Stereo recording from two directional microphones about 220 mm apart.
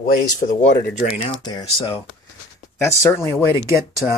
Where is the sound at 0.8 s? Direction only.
35° left (ahead or behind).